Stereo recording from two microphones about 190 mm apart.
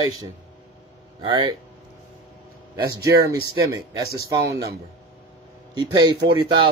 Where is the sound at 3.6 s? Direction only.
15° right (ahead or behind).